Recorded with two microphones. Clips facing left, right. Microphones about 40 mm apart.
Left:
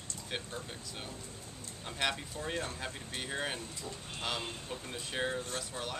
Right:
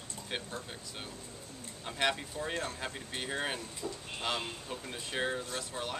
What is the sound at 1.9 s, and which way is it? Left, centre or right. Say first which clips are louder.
Speech: right 3 dB; centre.